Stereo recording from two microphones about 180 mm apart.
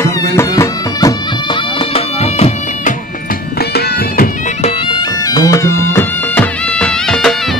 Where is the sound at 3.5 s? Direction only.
60° left (ahead or behind).